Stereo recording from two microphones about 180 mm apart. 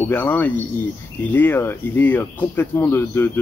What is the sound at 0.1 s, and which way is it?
Speech, 10° left (ahead or behind).